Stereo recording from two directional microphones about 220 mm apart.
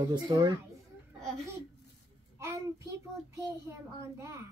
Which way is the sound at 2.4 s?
10° right (ahead or behind).